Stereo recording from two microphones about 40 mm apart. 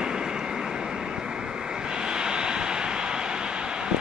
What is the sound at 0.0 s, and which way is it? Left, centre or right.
Vehicle, centre.